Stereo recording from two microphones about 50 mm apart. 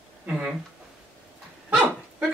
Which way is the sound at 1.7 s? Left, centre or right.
Right.